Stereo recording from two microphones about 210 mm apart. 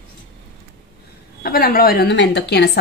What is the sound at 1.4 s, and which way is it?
A woman's voice, 45° left (ahead or behind).